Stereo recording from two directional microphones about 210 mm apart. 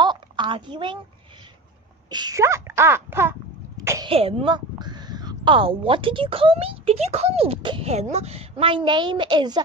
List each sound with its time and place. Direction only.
0.0 s a sound: 20° right (ahead or behind)
2.0 s speech: 20° right (ahead or behind)
4.1 s speech: 25° right (ahead or behind)